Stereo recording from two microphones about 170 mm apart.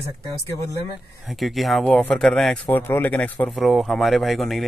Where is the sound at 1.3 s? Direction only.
Centre (ahead or behind).